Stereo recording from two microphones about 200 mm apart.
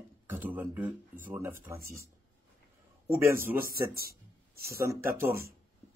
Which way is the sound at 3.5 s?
45° right (ahead or behind).